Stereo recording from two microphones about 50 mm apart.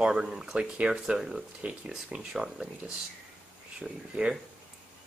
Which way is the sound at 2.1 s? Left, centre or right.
Centre.